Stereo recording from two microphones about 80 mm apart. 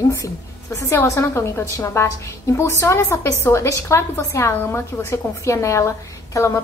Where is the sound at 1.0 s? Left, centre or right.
Left.